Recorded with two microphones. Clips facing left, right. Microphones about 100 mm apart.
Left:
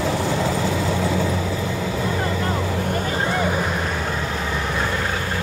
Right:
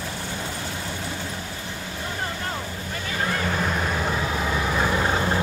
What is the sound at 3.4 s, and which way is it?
Vehicle, 5° left (ahead or behind).